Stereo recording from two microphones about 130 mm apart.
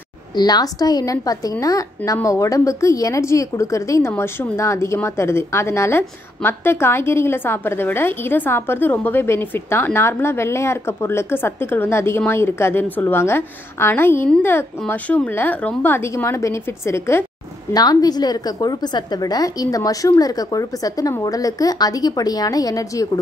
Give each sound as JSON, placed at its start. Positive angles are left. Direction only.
{"t": 0.4, "sound": "a woman's voice", "side_deg": 30}